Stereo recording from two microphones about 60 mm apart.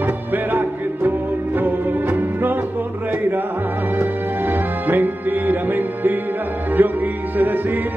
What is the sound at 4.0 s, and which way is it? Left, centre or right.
Music, right.